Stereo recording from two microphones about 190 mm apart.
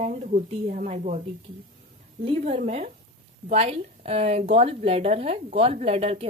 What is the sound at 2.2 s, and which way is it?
Speech, 35° right (ahead or behind).